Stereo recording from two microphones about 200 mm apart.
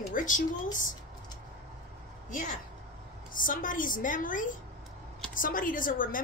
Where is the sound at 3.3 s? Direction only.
45° left (ahead or behind).